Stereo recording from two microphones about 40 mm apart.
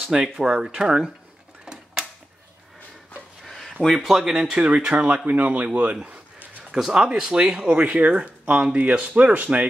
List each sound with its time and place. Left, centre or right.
0.1 s speech: centre
1.7 s typewriter: centre
3.8 s speech: centre; by 5.9 s right
6.8 s speech: centre
7.1 s speech: right
7.8 s speech: right